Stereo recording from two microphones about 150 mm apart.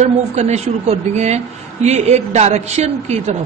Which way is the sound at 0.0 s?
50° right (ahead or behind).